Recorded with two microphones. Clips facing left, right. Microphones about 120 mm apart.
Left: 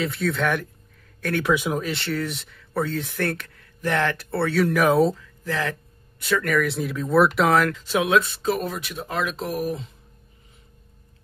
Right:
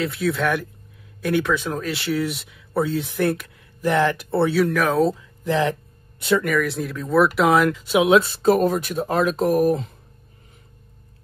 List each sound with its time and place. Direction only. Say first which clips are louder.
0.0 s speech: right 2 dB; 5° right (ahead or behind)
1.4 s speech: left 1 dB; 10° left (ahead or behind)
1.9 s speech: right 3 dB; 5° right (ahead or behind)
4.6 s speech: left 4 dB; centre (ahead or behind)
5.1 s speech: right 6 dB; 15° right (ahead or behind)
6.4 s speech: right 1 dB; centre (ahead or behind); by 8.2 s 15° right (ahead or behind)
8.2 s speech: right 7 dB; 35° right (ahead or behind)